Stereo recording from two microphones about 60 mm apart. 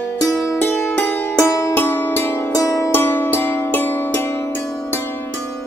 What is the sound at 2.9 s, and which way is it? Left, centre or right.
Music, left.